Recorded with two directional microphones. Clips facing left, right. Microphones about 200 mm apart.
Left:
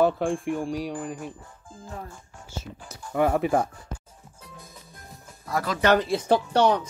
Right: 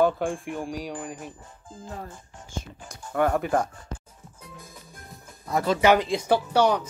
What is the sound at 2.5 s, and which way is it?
Speech, 5° left (ahead or behind).